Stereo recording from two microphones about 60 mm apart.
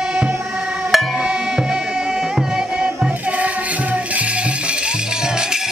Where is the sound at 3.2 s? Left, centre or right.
Right.